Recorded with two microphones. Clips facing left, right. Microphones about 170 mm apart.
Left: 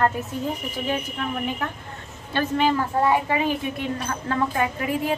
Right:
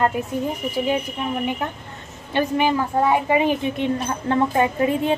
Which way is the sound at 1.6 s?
20° right (ahead or behind).